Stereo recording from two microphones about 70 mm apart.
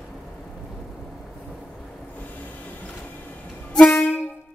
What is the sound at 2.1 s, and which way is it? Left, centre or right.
Music, left.